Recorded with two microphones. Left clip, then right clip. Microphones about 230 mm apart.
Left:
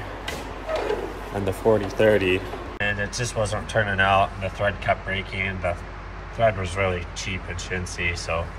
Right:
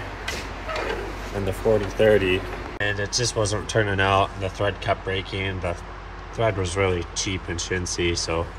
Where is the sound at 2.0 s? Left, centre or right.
Centre.